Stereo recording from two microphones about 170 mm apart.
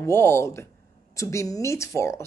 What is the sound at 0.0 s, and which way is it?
Speech, 15° left (ahead or behind).